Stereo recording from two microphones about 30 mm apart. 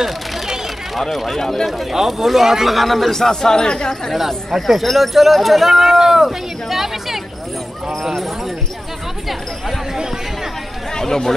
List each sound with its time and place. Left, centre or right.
0.9 s speech: centre
1.7 s speech: centre; by 4.1 s left
4.5 s speech: centre
8.0 s speech: centre
10.9 s speech: centre